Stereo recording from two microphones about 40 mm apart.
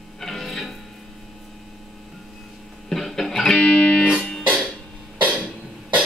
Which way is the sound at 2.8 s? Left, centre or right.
Centre.